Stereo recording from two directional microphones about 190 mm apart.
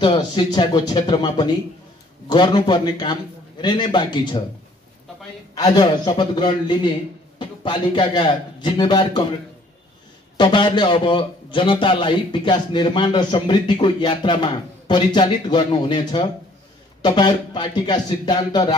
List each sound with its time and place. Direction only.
0.0 s a man's voice: 25° left (ahead or behind)
5.5 s a man's voice: 20° left (ahead or behind)
10.3 s a man's voice: 25° left (ahead or behind)